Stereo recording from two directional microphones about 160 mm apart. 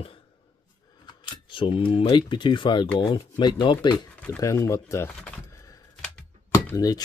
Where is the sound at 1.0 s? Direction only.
30° left (ahead or behind).